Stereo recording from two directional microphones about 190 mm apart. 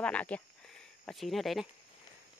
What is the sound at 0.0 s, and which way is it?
Speech, 5° left (ahead or behind).